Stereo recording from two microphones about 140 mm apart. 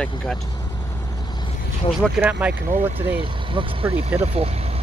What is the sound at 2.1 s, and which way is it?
Speech, 15° right (ahead or behind).